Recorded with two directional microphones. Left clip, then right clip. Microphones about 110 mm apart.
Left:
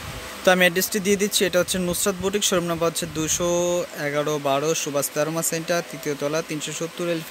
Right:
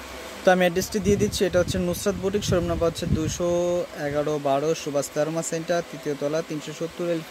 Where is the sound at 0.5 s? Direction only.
5° right (ahead or behind).